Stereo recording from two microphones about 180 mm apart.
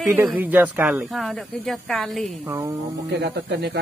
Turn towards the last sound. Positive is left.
turn(degrees=-65)  # may be behind; listen again after turning